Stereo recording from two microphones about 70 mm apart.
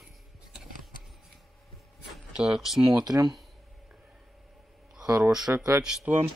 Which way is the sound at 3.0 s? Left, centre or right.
Right.